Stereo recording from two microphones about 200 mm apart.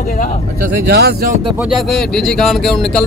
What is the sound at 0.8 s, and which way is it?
Speech, 55° right (ahead or behind).